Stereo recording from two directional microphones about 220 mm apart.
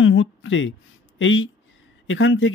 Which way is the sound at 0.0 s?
60° left (ahead or behind).